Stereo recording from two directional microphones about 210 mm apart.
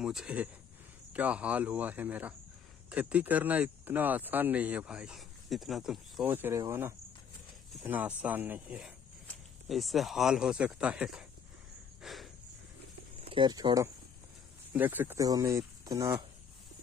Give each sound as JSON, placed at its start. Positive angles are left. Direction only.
{"t": 0.0, "sound": "speech", "side_deg": -5}
{"t": 12.0, "sound": "a sound", "side_deg": 0}
{"t": 13.3, "sound": "speech", "side_deg": -20}